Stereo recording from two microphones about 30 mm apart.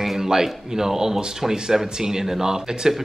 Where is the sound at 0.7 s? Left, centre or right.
Centre.